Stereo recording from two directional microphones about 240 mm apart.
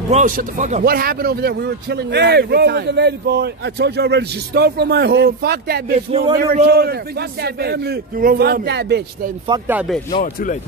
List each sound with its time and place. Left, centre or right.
0.1 s a man's voice: right
5.9 s speech: right
6.3 s a man's voice: right
9.7 s speech: centre
10.1 s speech: left